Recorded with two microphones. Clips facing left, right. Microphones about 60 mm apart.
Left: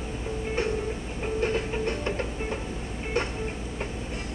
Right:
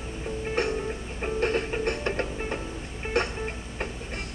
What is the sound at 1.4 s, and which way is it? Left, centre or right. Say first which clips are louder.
Music: right 1 dB; right.